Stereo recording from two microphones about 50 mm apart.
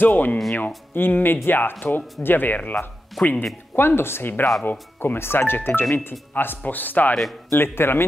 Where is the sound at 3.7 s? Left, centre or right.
Left.